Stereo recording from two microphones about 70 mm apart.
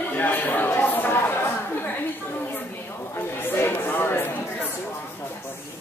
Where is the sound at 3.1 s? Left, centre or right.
Left.